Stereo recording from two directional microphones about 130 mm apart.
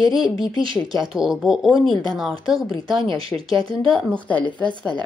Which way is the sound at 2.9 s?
40° right (ahead or behind).